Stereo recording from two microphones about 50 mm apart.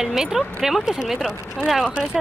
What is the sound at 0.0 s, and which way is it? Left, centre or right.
Speech, centre.